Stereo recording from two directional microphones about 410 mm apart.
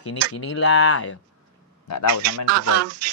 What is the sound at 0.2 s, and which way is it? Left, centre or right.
Speech, right.